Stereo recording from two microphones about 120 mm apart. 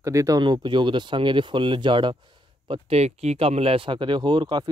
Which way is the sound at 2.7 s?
60° right (ahead or behind).